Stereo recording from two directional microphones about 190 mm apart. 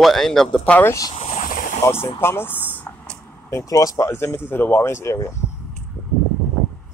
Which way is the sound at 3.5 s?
15° left (ahead or behind).